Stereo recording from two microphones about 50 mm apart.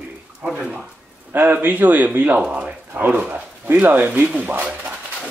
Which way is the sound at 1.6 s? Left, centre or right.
Right.